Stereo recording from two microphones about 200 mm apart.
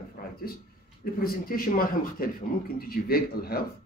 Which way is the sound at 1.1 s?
45° left (ahead or behind).